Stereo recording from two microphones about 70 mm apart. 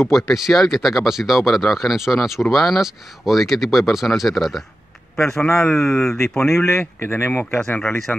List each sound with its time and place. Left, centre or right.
0.0 s a man's voice: centre
6.5 s speech: left
6.8 s speech: left
8.1 s speech: left